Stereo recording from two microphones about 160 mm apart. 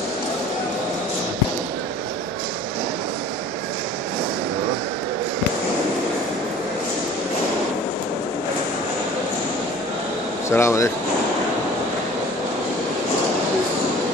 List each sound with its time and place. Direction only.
10.5 s speech: 15° left (ahead or behind)